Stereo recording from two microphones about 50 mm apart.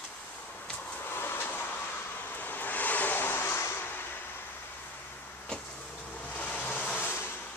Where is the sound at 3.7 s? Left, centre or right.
Left.